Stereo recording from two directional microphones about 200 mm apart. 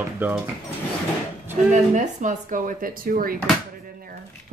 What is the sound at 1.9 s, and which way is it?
Speech, 40° right (ahead or behind).